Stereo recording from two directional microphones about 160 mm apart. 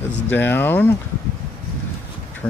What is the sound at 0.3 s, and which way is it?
Speech, 10° left (ahead or behind).